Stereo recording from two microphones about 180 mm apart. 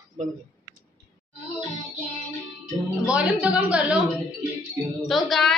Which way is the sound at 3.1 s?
5° right (ahead or behind).